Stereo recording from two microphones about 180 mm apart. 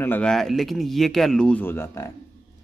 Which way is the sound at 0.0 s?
10° left (ahead or behind).